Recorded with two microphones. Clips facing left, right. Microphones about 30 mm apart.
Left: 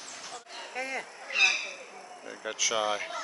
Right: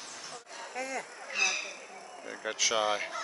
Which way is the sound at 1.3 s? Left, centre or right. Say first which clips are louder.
Left 5 dB; left.